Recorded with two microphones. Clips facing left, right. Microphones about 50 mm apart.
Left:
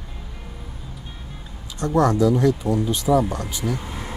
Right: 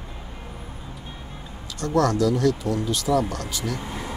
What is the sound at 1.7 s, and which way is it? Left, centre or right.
Speech, centre.